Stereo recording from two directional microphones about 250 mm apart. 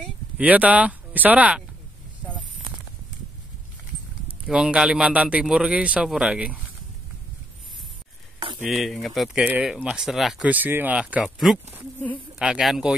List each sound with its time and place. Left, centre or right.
0.4 s a man's voice: centre
4.5 s a man's voice: centre
8.6 s a man's voice: centre